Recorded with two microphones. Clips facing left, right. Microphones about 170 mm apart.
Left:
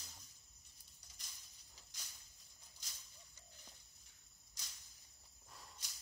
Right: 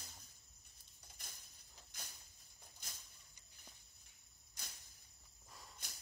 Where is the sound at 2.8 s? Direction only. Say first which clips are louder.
Right 5 dB; 55° right (ahead or behind).